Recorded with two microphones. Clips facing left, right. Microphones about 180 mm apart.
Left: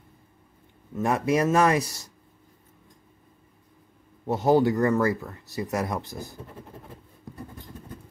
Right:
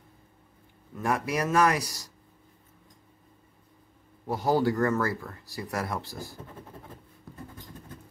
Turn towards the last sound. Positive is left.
turn(degrees=20)  # may be behind; listen again after turning